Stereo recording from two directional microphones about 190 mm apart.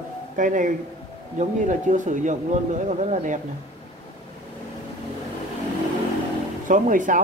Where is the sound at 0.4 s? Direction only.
45° right (ahead or behind).